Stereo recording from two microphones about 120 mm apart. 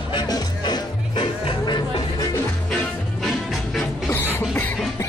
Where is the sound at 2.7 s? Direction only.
5° left (ahead or behind).